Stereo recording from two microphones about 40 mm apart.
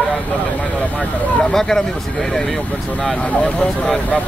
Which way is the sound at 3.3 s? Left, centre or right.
Left.